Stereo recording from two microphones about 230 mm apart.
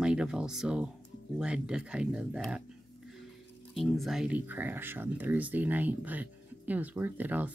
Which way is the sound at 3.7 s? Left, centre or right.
Centre.